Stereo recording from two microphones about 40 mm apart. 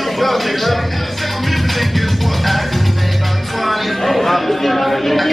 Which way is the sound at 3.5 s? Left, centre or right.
Centre.